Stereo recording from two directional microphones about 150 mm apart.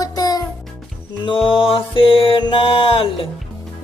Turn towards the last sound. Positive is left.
turn(degrees=35)  # may be behind; listen again after turning